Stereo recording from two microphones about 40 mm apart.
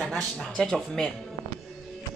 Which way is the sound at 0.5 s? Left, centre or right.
Centre.